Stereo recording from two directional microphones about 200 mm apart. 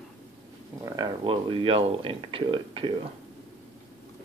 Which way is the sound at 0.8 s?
20° right (ahead or behind).